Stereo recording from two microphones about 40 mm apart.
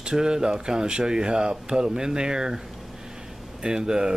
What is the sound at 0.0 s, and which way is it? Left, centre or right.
Speech, right.